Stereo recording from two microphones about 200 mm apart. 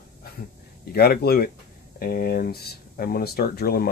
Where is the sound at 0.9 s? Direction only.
50° left (ahead or behind).